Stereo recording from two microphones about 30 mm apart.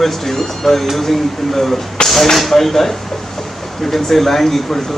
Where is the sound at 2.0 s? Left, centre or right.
Left.